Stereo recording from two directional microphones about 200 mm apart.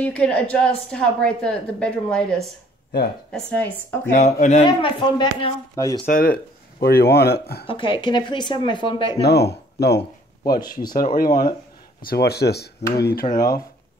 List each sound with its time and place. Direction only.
0.0 s a woman's voice: 5° left (ahead or behind)
4.1 s speech: 35° left (ahead or behind)
4.6 s speech: 25° left (ahead or behind)
6.0 s speech: 45° left (ahead or behind)
7.6 s speech: 25° left (ahead or behind)
9.2 s speech: 55° left (ahead or behind)
10.6 s speech: 20° left (ahead or behind)
12.1 s speech: 55° left (ahead or behind)